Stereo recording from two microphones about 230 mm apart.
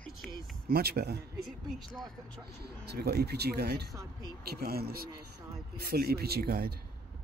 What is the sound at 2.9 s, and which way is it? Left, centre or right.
Speech, right.